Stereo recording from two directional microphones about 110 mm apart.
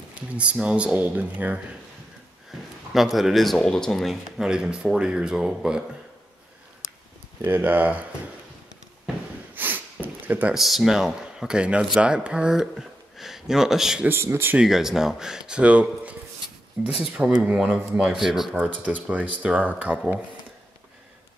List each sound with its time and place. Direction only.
0.1 s speech: 10° right (ahead or behind)
2.9 s speech: centre (ahead or behind)
7.4 s speech: 15° right (ahead or behind)
9.6 s snort: 15° right (ahead or behind)
10.5 s speech: centre (ahead or behind)
14.0 s speech: 20° right (ahead or behind)
14.6 s speech: 5° right (ahead or behind)
18.6 s speech: 10° right (ahead or behind)